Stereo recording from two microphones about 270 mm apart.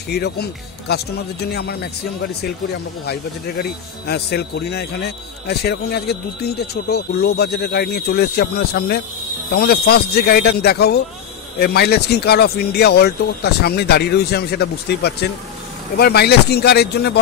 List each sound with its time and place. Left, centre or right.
0.1 s speech: left
3.1 s speech: left